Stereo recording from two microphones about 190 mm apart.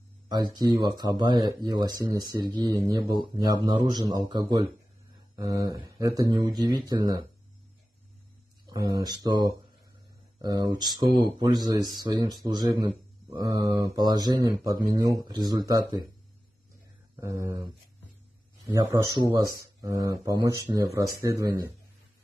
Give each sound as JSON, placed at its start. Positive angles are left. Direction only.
{"t": 0.3, "sound": "speech", "side_deg": -20}
{"t": 8.6, "sound": "speech", "side_deg": -20}
{"t": 10.4, "sound": "speech", "side_deg": -20}
{"t": 17.2, "sound": "speech", "side_deg": -15}
{"t": 18.8, "sound": "speech", "side_deg": -20}